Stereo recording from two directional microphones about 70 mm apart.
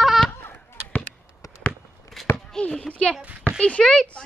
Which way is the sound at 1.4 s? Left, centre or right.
Left.